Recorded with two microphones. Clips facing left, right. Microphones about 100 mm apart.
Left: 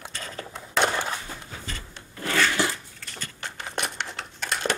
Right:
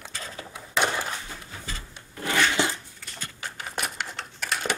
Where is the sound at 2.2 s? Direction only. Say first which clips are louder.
Even; 15° right (ahead or behind).